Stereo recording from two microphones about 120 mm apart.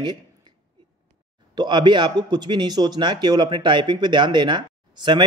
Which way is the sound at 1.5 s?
40° right (ahead or behind).